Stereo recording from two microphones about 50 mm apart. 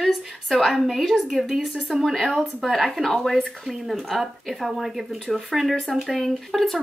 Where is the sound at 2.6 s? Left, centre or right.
Centre.